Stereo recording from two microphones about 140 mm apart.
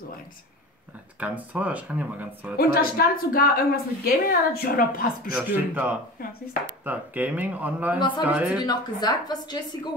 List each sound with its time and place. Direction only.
1.2 s speech: 10° right (ahead or behind)
2.5 s a woman's voice: 90° left
5.5 s speech: 10° right (ahead or behind)
8.5 s a woman's voice: 30° left (ahead or behind)